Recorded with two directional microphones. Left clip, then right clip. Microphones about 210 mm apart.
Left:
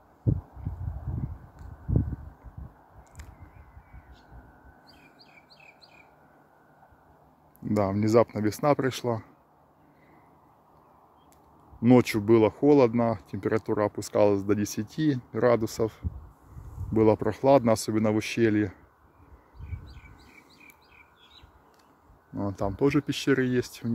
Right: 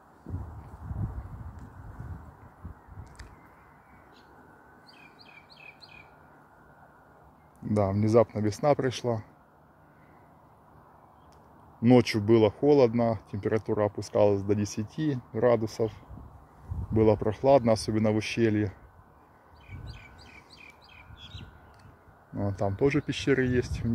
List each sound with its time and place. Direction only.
7.6 s speech: 20° left (ahead or behind)
11.8 s speech: 15° left (ahead or behind)
22.3 s speech: 15° left (ahead or behind)